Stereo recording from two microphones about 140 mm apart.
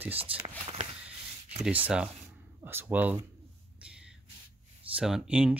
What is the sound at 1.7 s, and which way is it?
Speech, 10° right (ahead or behind).